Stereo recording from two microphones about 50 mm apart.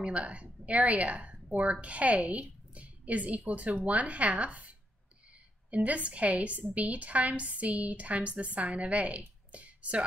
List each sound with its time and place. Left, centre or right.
0.0 s a woman's voice: right
5.7 s a woman's voice: right
9.5 s a sound: right